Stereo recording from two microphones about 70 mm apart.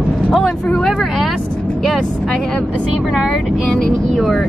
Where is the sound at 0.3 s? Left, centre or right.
Centre.